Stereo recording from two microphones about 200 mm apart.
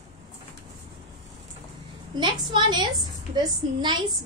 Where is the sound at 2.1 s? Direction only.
25° right (ahead or behind).